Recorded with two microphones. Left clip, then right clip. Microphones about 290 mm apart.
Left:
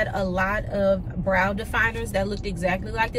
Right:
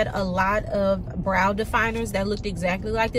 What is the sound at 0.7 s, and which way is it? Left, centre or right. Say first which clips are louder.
Speech: left 1 dB; right.